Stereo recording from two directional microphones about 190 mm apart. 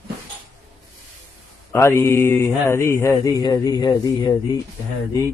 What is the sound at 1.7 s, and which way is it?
Mantra, 15° left (ahead or behind).